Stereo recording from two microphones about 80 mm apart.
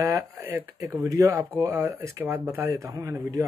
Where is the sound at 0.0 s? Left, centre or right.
Right.